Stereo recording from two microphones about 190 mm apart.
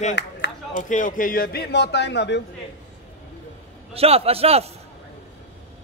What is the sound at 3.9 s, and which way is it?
Speech, 30° right (ahead or behind).